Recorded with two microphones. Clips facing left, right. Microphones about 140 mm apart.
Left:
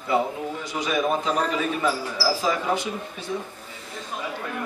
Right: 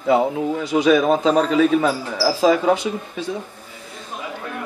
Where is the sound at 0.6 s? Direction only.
80° right.